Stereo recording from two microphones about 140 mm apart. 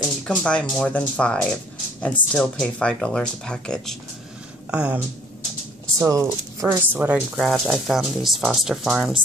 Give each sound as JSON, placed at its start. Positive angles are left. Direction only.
{"t": 0.2, "sound": "speech", "side_deg": 5}
{"t": 4.6, "sound": "speech", "side_deg": -10}
{"t": 5.9, "sound": "speech", "side_deg": -25}
{"t": 6.9, "sound": "speech", "side_deg": -15}
{"t": 7.2, "sound": "speech", "side_deg": 0}